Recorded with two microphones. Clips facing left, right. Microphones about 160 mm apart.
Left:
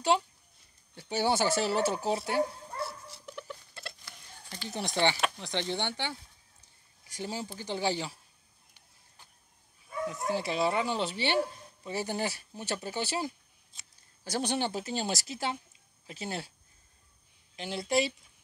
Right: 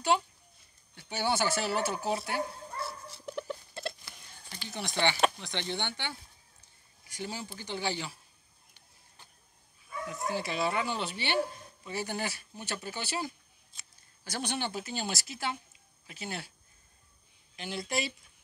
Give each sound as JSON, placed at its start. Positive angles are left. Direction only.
{"t": 0.1, "sound": "speech", "side_deg": 25}
{"t": 3.3, "sound": "a sound", "side_deg": -35}
{"t": 4.6, "sound": "speech", "side_deg": 40}
{"t": 9.8, "sound": "speech", "side_deg": 30}
{"t": 17.6, "sound": "speech", "side_deg": 30}